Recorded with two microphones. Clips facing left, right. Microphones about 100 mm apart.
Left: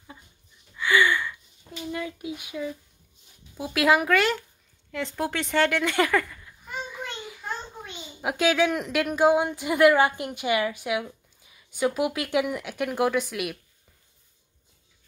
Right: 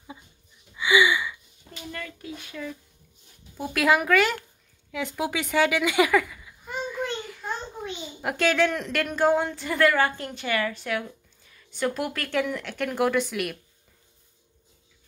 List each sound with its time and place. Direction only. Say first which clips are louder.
0.7 s gasp: right 1 dB; 10° right (ahead or behind)
1.9 s speech: left 5 dB; 15° left (ahead or behind)
3.5 s speech: left 1 dB; centre (ahead or behind)
4.9 s a sound: even; 5° right (ahead or behind)
8.2 s speech: even; 5° left (ahead or behind)